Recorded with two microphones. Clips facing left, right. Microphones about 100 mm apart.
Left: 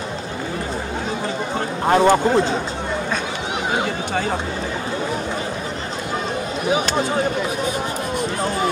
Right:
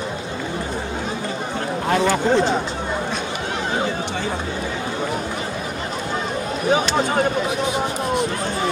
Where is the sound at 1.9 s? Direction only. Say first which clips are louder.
Left 5 dB; 45° left (ahead or behind).